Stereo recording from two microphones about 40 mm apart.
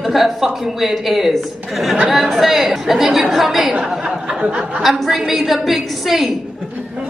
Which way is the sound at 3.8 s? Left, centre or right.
Right.